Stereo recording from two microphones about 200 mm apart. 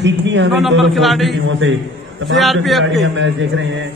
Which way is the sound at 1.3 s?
70° right (ahead or behind).